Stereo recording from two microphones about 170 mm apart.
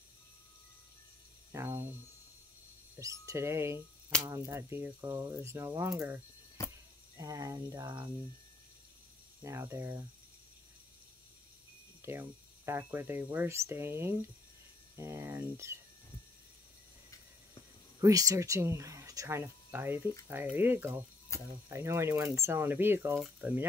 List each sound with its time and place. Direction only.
1.5 s speech: 15° right (ahead or behind)
3.0 s speech: 20° right (ahead or behind)
9.4 s speech: 15° right (ahead or behind)
12.0 s speech: 15° right (ahead or behind)
18.0 s speech: 20° right (ahead or behind)
23.1 s speech: centre (ahead or behind)